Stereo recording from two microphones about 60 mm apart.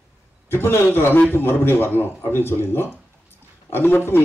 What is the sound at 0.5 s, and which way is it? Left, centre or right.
Speech, left.